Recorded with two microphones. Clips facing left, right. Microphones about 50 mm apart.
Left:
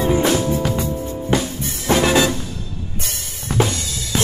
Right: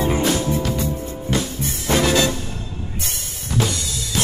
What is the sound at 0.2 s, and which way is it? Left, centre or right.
Music, left.